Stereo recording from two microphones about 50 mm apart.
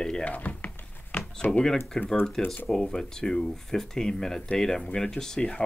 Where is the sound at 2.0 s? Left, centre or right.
Centre.